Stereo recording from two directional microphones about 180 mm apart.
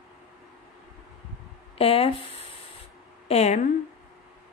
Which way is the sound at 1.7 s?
30° left (ahead or behind).